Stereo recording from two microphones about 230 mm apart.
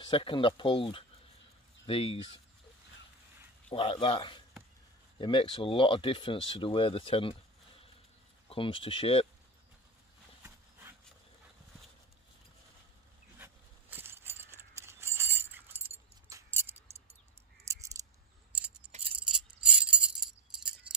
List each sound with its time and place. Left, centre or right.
0.0 s speech: left
3.7 s speech: left
8.5 s speech: left
10.4 s horse: centre
13.4 s a sound: centre
18.0 s scissors: centre
19.7 s glass: centre